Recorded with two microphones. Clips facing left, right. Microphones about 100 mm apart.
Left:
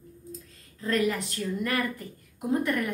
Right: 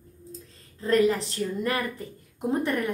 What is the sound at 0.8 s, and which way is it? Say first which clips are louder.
A woman's voice: right 5 dB; 30° right (ahead or behind).